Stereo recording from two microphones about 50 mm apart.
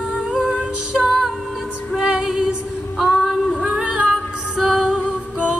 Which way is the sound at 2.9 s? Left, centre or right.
Centre.